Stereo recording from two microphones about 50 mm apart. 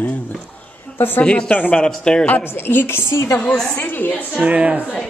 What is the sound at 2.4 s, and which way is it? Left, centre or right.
Speech, left.